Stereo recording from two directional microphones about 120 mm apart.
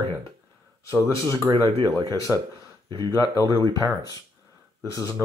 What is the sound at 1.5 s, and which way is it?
Speech, 15° right (ahead or behind).